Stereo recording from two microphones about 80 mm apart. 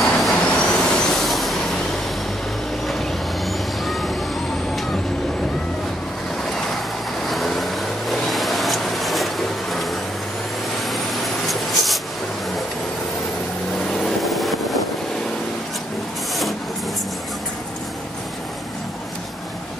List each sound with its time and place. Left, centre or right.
0.0 s vehicle: centre
2.9 s vehicle: centre
7.2 s vehicle: centre
11.4 s a sound: centre
13.8 s vehicle: centre